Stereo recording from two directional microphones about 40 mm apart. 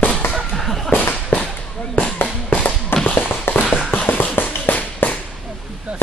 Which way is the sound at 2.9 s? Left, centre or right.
Left.